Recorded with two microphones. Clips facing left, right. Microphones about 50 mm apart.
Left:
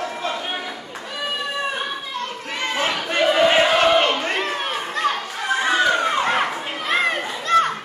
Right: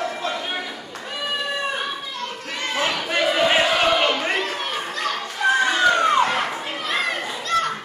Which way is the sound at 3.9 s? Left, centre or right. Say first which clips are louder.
Left 2 dB; centre.